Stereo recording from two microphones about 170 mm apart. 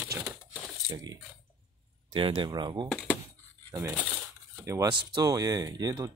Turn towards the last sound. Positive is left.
turn(degrees=-20)  # may be behind; listen again after turning